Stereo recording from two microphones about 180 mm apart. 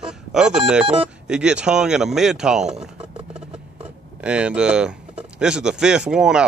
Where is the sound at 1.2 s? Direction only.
5° right (ahead or behind).